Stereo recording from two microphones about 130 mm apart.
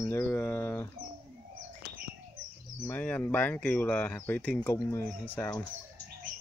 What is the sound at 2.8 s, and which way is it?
Speech, 15° left (ahead or behind).